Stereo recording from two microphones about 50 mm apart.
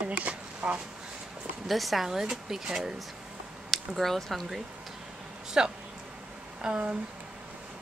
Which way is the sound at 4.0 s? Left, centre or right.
Centre.